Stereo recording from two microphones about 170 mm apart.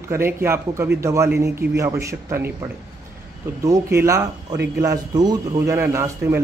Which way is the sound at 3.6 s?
15° right (ahead or behind).